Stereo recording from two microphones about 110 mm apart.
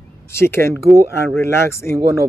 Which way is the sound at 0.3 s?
20° left (ahead or behind).